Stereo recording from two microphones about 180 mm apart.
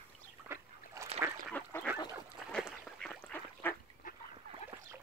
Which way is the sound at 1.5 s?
10° left (ahead or behind).